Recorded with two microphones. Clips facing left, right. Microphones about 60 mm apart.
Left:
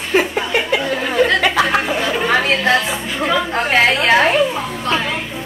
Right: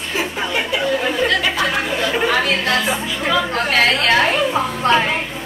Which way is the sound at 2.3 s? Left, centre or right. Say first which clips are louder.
Left 3 dB; left.